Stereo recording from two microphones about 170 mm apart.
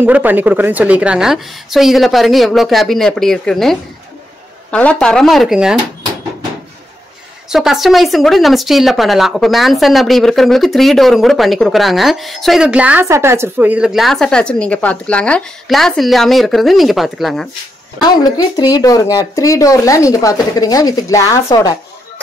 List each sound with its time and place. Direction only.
0.0 s speech: 10° right (ahead or behind)
7.4 s speech: centre (ahead or behind)
18.0 s speech: 25° left (ahead or behind)